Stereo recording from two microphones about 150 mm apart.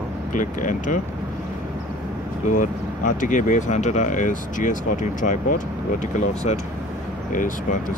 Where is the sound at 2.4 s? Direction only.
60° left (ahead or behind).